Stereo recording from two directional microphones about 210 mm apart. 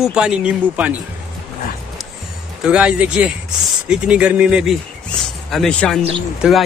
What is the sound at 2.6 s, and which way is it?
Speech, 5° right (ahead or behind).